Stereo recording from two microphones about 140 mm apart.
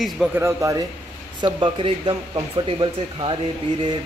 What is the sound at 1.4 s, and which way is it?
Speech, 35° right (ahead or behind).